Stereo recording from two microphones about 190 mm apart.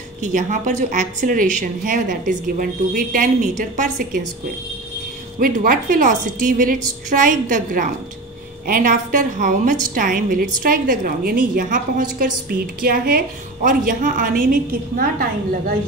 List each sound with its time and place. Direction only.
0.2 s a woman's voice: 40° right (ahead or behind)
5.4 s a woman's voice: 50° right (ahead or behind)